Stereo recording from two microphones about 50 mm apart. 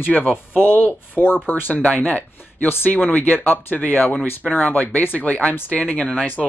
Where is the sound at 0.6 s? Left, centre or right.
Left.